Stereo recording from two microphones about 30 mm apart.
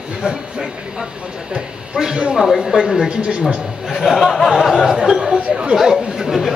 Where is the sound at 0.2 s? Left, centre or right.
Centre.